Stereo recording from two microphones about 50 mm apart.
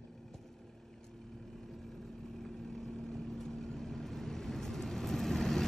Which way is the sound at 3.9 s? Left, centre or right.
Centre.